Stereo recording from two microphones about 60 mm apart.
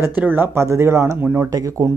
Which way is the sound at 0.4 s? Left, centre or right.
Right.